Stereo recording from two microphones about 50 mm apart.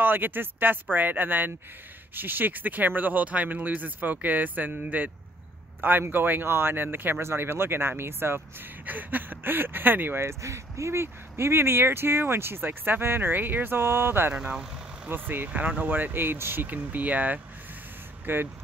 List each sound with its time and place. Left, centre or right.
0.0 s speech: right
8.8 s speech: right
10.2 s speech: right
14.3 s speech: centre
15.0 s speech: right
15.5 s speech: right
16.6 s speech: right
18.2 s speech: right